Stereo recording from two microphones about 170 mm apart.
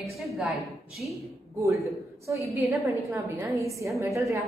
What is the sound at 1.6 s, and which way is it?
A woman's voice, 20° right (ahead or behind).